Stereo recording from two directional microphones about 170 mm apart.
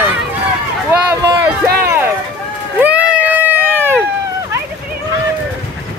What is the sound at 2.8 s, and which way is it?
Run, 10° right (ahead or behind).